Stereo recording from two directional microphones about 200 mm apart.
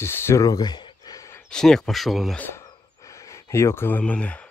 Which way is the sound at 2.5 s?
15° left (ahead or behind).